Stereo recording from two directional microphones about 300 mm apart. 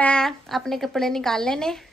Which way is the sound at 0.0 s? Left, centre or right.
Centre.